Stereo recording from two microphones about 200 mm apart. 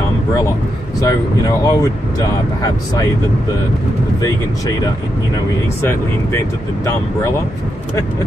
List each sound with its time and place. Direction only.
1.0 s speech: 15° left (ahead or behind)
5.9 s speech: 15° left (ahead or behind)